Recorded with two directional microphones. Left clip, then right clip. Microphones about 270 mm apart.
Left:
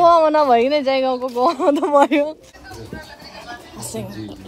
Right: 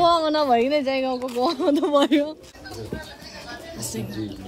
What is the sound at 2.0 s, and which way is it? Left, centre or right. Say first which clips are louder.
Speech: left 5 dB; centre.